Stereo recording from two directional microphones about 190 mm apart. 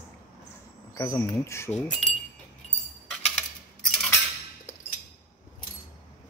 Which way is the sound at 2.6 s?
35° left (ahead or behind).